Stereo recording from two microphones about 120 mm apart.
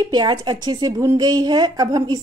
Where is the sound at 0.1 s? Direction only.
40° right (ahead or behind).